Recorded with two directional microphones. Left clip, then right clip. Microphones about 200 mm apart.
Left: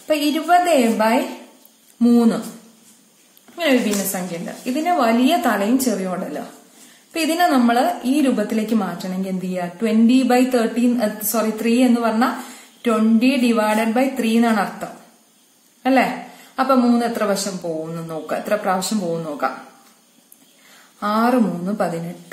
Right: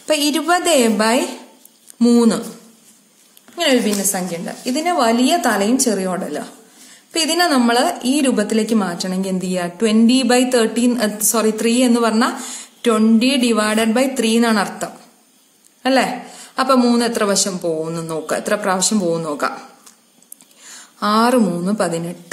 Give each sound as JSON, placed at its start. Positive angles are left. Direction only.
{"t": 0.1, "sound": "speech", "side_deg": -40}
{"t": 3.5, "sound": "a woman's voice", "side_deg": -30}
{"t": 21.0, "sound": "speech", "side_deg": -35}